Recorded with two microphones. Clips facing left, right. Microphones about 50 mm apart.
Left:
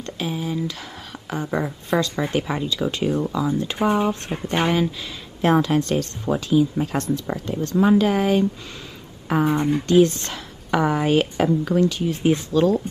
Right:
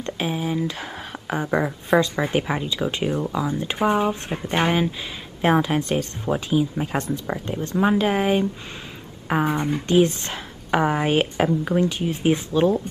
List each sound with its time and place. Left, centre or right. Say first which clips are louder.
0.0 s speech: right 2 dB; right
3.1 s speech: left 2 dB; centre
9.5 s speech: left 3 dB; centre
9.8 s speech: left 2 dB; right